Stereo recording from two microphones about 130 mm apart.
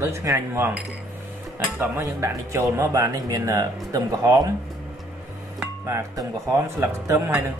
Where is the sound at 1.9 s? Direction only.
25° right (ahead or behind).